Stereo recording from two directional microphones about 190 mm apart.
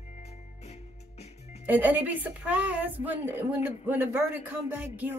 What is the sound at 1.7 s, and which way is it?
Speech, 10° right (ahead or behind).